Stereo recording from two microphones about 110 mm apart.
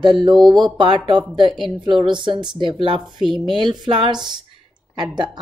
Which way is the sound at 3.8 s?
45° right (ahead or behind).